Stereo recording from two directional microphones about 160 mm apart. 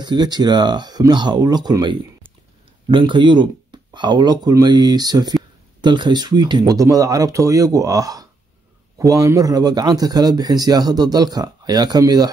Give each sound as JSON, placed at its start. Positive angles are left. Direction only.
{"t": 0.0, "sound": "speech", "side_deg": -25}